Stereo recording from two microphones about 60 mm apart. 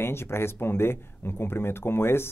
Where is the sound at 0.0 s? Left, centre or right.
Left.